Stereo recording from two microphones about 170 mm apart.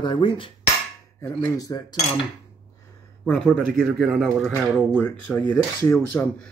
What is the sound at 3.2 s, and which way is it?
Speech, 5° left (ahead or behind).